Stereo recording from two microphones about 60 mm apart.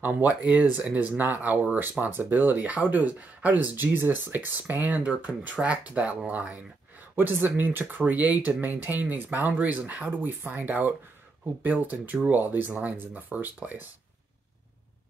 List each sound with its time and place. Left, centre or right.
0.0 s speech: right